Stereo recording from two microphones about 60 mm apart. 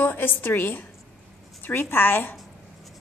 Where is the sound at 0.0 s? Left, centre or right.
Left.